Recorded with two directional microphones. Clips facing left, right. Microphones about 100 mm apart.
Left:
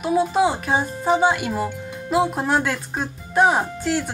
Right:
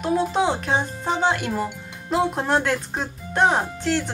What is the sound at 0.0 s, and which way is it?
Speech, 5° left (ahead or behind).